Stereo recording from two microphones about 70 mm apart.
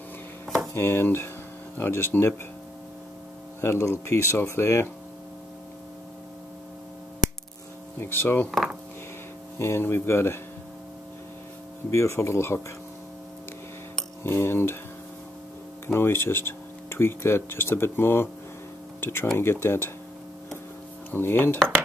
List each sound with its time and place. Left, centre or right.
0.7 s speech: left
3.6 s speech: left
8.0 s speech: left
8.5 s speech: centre
9.6 s speech: left
11.9 s speech: left
14.2 s speech: left
15.9 s speech: left
21.1 s speech: left